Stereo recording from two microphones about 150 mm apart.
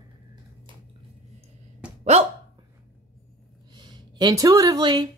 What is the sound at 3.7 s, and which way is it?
Speech, 30° right (ahead or behind).